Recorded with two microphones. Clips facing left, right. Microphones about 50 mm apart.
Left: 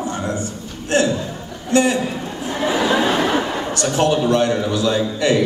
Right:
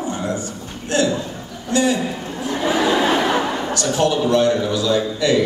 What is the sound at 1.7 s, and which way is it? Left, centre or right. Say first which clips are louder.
Speech: left 2 dB; left.